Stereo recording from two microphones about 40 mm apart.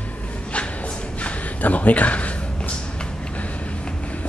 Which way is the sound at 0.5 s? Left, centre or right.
Left.